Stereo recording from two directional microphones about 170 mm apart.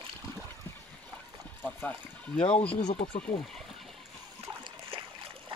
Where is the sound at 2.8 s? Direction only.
45° left (ahead or behind).